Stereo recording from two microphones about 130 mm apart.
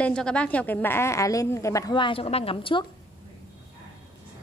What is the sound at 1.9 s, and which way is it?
Speech, 40° left (ahead or behind).